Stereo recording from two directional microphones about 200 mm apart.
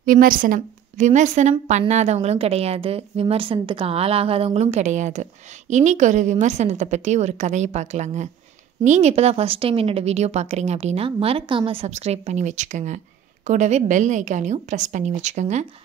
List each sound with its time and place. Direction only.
0.0 s a woman's voice: 45° right (ahead or behind)